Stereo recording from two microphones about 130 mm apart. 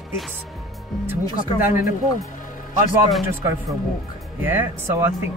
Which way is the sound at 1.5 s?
90° left.